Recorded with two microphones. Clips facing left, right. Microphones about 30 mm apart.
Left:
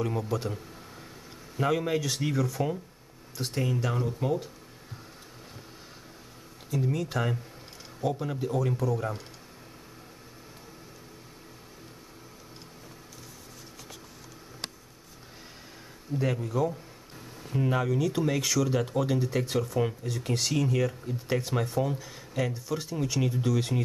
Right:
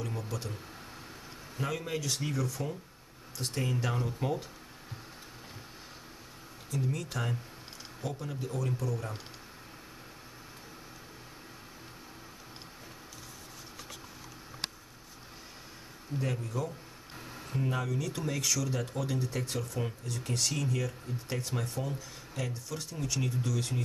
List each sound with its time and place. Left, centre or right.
0.0 s speech: centre
1.6 s speech: centre
3.7 s speech: centre
6.7 s speech: centre
16.2 s speech: centre